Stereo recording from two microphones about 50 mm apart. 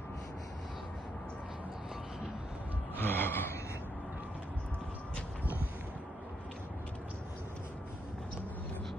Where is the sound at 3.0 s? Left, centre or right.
Left.